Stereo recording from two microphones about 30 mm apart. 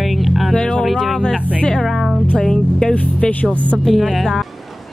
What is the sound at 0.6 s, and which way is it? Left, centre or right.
Music, left.